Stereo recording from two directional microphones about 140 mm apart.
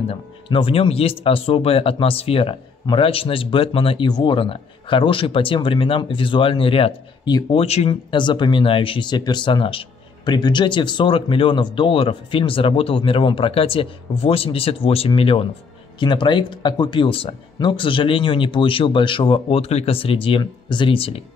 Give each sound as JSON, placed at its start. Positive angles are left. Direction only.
{"t": 0.1, "sound": "speech", "side_deg": 40}